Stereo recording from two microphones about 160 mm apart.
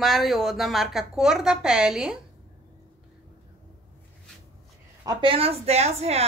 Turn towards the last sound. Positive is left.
turn(degrees=-40)  # may be behind; listen again after turning